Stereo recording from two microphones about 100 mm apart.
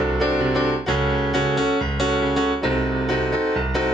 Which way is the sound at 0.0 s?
5° right (ahead or behind).